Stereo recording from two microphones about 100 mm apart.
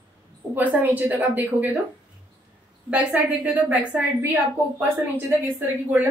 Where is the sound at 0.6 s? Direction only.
15° right (ahead or behind).